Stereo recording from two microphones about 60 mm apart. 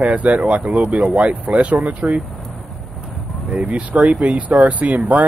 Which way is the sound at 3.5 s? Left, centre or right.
Right.